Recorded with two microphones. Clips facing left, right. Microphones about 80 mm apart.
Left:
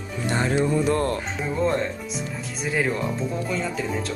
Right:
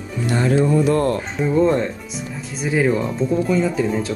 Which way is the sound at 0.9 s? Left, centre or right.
Right.